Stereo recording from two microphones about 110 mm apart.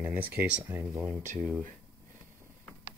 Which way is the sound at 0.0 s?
15° right (ahead or behind).